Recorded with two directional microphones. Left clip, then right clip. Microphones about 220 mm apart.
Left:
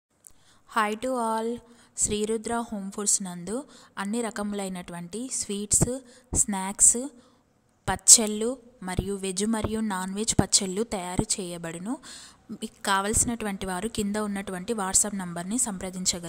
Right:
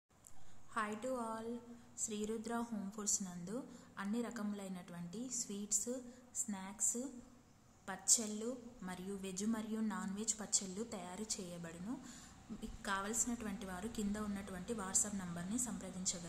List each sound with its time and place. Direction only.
0.7 s a woman's voice: 45° left (ahead or behind)